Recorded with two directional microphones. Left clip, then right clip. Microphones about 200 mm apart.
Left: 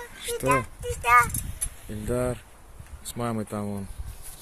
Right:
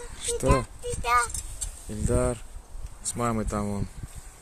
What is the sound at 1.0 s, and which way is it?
Speech, centre (ahead or behind).